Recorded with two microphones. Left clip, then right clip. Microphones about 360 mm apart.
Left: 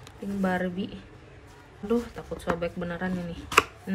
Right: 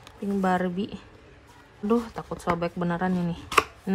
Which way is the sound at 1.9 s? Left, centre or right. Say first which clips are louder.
Right 2 dB; centre.